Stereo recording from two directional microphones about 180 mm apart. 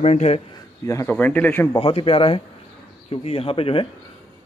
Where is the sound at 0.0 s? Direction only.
40° left (ahead or behind).